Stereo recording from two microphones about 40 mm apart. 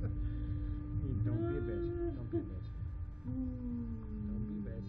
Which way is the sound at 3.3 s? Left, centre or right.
Centre.